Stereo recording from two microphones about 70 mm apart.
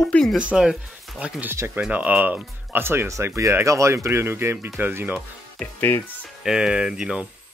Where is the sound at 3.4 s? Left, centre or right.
Right.